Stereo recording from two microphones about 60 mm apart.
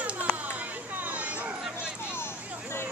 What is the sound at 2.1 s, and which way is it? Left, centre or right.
Vehicle, left.